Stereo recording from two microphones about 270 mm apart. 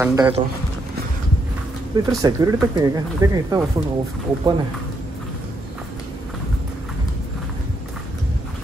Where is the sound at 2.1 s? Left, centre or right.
Centre.